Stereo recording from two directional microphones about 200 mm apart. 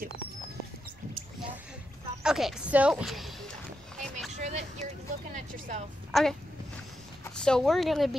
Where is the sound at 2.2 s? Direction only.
5° right (ahead or behind).